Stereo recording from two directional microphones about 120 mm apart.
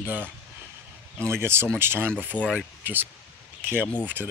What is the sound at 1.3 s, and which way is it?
Speech, 20° right (ahead or behind).